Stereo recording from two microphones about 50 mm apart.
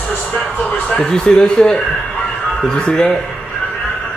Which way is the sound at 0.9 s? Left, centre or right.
Centre.